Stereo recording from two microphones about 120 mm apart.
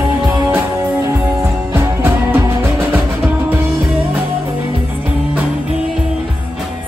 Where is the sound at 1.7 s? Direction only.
20° right (ahead or behind).